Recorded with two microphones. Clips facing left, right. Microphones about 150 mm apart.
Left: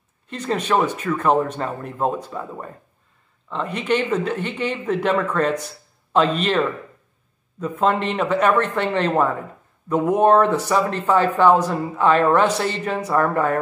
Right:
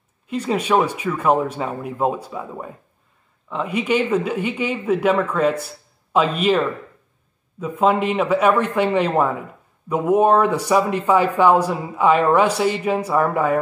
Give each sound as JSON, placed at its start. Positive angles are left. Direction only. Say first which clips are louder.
{"t": 0.3, "sound": "speech", "louder": "right 2 dB", "side_deg": -10}
{"t": 7.6, "sound": "speech", "louder": "right 2 dB", "side_deg": -10}